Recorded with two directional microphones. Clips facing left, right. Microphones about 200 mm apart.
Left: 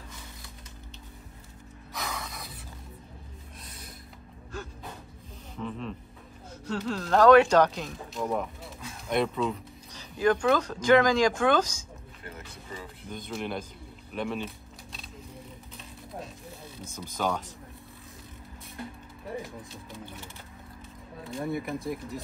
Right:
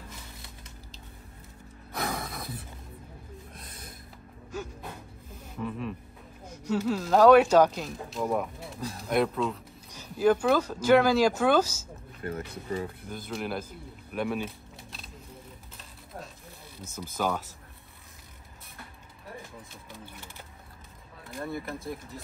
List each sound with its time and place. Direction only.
1.9 s music: 55° right (ahead or behind)
3.6 s music: 55° right (ahead or behind)
5.6 s music: 10° right (ahead or behind)
6.6 s a man's voice: 10° right (ahead or behind)
12.2 s speech: 55° right (ahead or behind)
13.1 s a man's voice: centre (ahead or behind)
14.1 s keys jangling: 5° right (ahead or behind)
16.9 s a man's voice: 5° right (ahead or behind)
21.3 s a man's voice: centre (ahead or behind)